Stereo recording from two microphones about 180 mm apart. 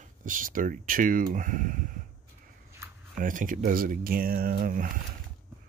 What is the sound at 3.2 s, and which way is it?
Speech, 50° right (ahead or behind).